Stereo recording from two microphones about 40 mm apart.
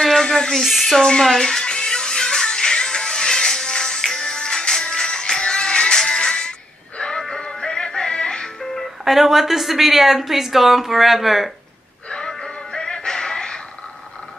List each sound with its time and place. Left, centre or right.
0.0 s a sound: centre
0.6 s speech: centre
1.3 s music: centre
9.0 s speech: centre
12.1 s music: centre